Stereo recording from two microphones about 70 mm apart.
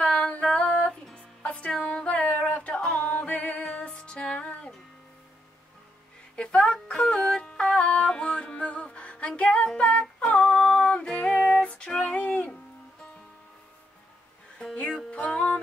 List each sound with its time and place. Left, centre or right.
0.0 s female singing: centre
1.1 s music: centre
6.3 s music: centre
9.4 s female singing: centre
10.3 s music: centre
14.6 s music: centre